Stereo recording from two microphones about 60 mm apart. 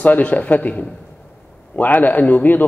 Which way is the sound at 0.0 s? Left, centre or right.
Left.